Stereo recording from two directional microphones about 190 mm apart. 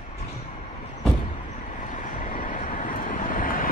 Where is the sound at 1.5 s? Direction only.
40° left (ahead or behind).